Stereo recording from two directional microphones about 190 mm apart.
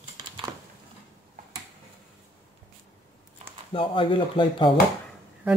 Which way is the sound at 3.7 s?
25° left (ahead or behind).